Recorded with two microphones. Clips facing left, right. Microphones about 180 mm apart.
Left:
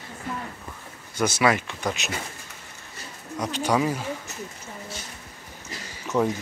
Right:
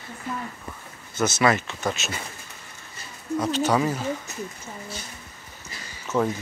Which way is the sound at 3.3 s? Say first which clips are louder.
Right 2 dB; 15° left (ahead or behind).